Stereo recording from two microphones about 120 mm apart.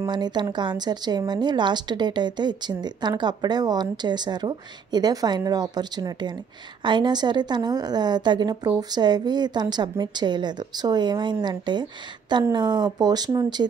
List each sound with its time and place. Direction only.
0.0 s a woman's voice: 35° right (ahead or behind)